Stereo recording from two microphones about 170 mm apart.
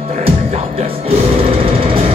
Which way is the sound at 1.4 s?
35° right (ahead or behind).